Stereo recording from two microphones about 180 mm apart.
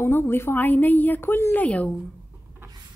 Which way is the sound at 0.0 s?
15° left (ahead or behind).